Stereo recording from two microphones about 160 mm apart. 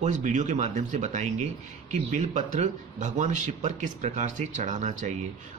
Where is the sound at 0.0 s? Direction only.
50° right (ahead or behind).